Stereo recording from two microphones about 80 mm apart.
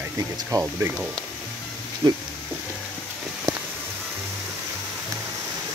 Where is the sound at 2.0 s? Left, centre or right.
Right.